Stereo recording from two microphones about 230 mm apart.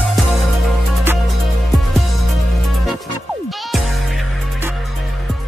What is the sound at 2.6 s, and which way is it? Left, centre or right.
Music, centre.